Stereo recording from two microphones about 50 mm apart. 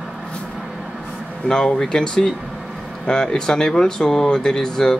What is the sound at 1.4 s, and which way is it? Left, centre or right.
Speech, centre.